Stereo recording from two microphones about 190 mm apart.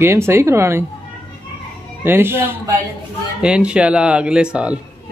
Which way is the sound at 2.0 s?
10° right (ahead or behind).